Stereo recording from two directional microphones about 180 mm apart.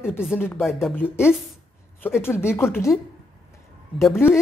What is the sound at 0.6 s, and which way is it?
Speech, centre (ahead or behind).